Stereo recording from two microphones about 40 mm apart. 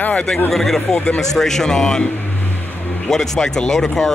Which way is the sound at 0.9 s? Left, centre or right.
Left.